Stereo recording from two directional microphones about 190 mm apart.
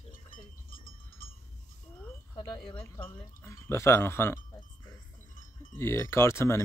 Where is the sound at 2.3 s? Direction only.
20° left (ahead or behind).